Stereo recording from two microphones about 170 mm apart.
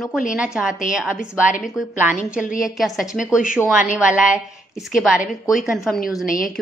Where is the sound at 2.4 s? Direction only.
55° left (ahead or behind).